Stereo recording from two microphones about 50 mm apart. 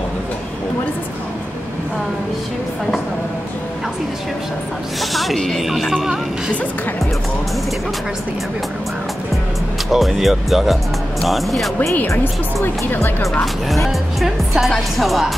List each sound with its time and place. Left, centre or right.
5.1 s speech: centre
9.8 s speech: centre
12.6 s speech: left
13.7 s speech: centre